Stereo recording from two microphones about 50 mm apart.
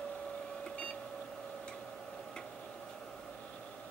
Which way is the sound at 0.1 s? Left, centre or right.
Centre.